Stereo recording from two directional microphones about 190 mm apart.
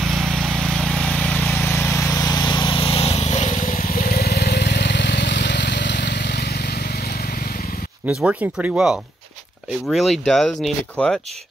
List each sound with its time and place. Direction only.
0.0 s vehicle: centre (ahead or behind); by 6.4 s 60° left (ahead or behind)
8.1 s speech: 5° right (ahead or behind)